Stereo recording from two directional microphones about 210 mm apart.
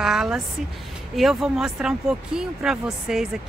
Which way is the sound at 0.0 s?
Centre (ahead or behind).